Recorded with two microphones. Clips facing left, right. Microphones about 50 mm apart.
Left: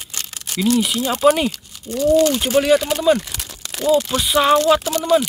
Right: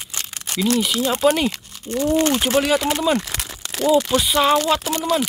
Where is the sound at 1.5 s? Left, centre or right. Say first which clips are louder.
Right 1 dB; right.